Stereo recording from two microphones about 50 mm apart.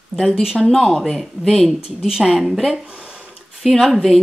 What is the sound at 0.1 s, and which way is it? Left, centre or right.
Speech, centre.